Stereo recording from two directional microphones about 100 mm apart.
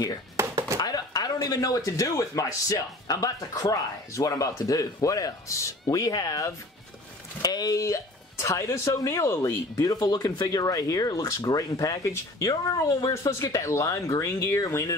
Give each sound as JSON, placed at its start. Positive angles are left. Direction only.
{"t": 0.4, "sound": "chopping", "side_deg": -25}
{"t": 0.7, "sound": "speech", "side_deg": 40}